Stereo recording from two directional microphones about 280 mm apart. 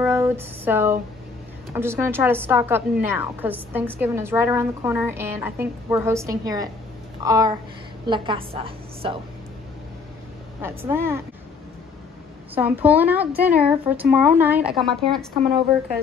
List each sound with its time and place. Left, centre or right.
0.0 s a sound: centre
1.7 s a woman's voice: centre
10.6 s a woman's voice: centre
12.5 s a woman's voice: centre